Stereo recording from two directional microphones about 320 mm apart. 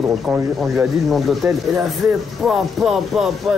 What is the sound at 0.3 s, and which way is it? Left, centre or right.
Speech, centre.